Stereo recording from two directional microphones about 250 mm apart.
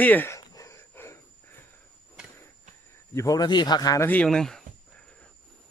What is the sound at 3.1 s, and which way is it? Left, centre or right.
Speech, centre.